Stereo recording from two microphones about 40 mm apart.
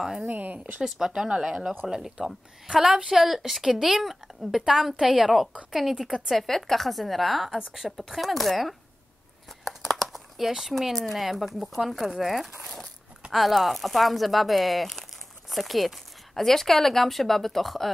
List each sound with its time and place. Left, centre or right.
0.3 s speech: right
0.8 s a woman's voice: centre
5.9 s a woman's voice: centre
6.3 s a woman's voice: centre
9.7 s a sound: centre
10.7 s a woman's voice: centre